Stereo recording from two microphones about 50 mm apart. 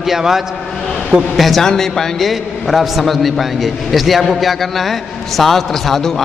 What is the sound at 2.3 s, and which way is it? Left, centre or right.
A man's voice, centre.